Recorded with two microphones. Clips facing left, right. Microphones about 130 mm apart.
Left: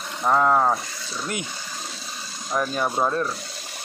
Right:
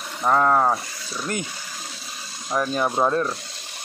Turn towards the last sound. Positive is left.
turn(degrees=-5)  # may be behind; listen again after turning